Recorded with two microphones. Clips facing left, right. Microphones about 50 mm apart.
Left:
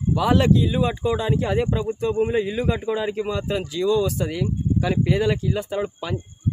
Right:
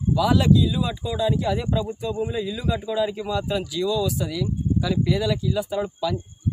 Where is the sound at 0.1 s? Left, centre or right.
Left.